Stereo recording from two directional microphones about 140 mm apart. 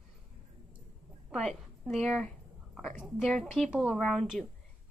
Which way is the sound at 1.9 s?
Centre (ahead or behind).